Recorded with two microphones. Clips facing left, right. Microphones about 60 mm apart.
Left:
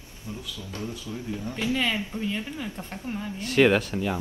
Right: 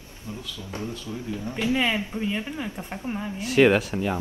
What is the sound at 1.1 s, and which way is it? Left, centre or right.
Speech, centre.